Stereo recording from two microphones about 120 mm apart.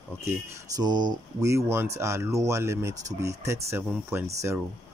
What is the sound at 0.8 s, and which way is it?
Speech, 35° right (ahead or behind).